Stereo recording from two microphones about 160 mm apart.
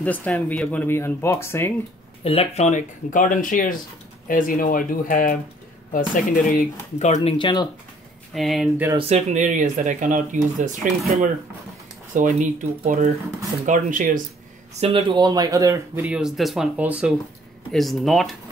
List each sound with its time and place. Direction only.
0.0 s speech: 10° left (ahead or behind)
2.2 s speech: 40° left (ahead or behind)
7.3 s speech: 30° left (ahead or behind)
8.4 s speech: centre (ahead or behind)
8.9 s speech: 45° right (ahead or behind)
14.8 s speech: 35° right (ahead or behind)
16.0 s speech: 5° right (ahead or behind)